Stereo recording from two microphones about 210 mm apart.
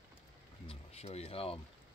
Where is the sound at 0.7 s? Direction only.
30° left (ahead or behind).